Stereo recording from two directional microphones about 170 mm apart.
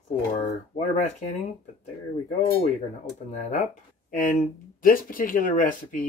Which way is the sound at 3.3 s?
45° left (ahead or behind).